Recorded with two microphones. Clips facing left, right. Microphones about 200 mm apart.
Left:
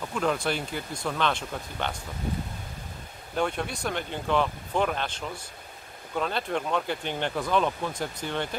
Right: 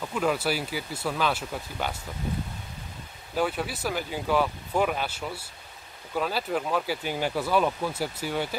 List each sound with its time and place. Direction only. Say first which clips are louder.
0.1 s speech: right 1 dB; 5° right (ahead or behind)
3.3 s speech: right 1 dB; 5° right (ahead or behind)